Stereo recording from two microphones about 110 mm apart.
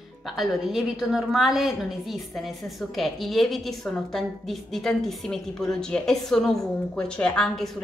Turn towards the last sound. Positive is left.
turn(degrees=5)  # may be behind; listen again after turning